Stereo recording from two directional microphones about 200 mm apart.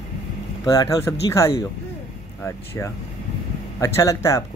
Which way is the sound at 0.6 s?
15° left (ahead or behind).